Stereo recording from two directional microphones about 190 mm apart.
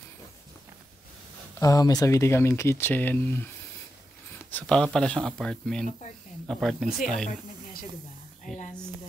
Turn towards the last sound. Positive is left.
turn(degrees=0)  # may be behind; listen again after turning